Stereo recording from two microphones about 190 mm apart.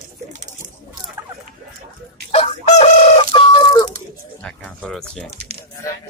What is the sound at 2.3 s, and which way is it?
Chicken, 35° left (ahead or behind).